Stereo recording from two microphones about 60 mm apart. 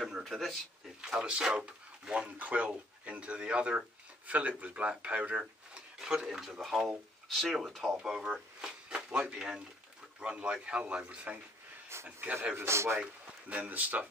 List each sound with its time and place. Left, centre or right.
0.0 s a sound: centre
1.0 s speech: centre
5.8 s speech: centre
7.9 s speech: centre
11.9 s a man's voice: right
13.6 s speech: right